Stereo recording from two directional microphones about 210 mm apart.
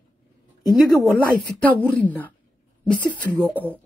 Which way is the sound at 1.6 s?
5° left (ahead or behind).